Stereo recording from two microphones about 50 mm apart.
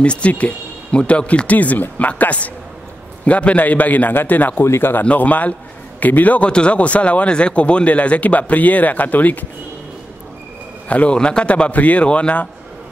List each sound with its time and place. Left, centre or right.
0.0 s a man's voice: left
4.6 s speech: left
5.0 s a man's voice: left
10.9 s speech: left